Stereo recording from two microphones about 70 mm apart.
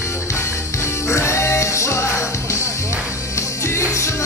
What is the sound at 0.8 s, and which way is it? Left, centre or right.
Music, left.